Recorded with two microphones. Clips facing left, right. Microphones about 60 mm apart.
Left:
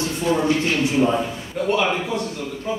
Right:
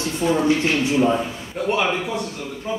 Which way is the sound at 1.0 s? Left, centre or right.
Centre.